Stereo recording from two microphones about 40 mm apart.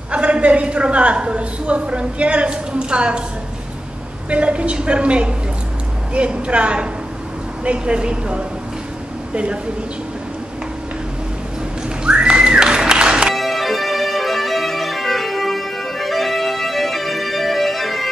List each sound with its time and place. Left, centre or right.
0.1 s a woman's voice: right
4.3 s a woman's voice: right
12.0 s music: right
13.3 s music: centre